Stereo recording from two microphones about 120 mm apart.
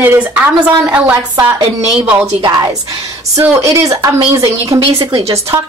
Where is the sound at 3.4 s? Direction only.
25° right (ahead or behind).